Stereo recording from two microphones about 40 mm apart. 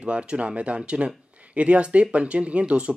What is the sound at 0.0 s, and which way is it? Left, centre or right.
Speech, right.